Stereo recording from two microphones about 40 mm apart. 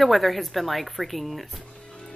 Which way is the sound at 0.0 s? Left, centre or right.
Centre.